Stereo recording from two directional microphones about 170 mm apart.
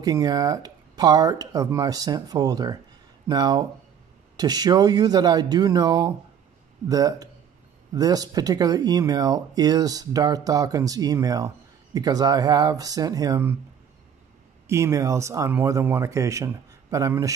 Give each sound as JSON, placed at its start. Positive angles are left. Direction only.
{"t": 0.0, "sound": "speech", "side_deg": -20}
{"t": 14.7, "sound": "speech", "side_deg": -15}